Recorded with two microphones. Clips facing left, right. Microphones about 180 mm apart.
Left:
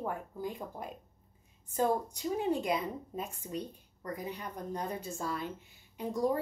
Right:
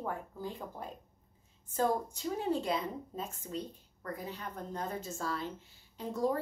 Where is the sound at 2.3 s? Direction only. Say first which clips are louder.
Left 2 dB; 15° left (ahead or behind).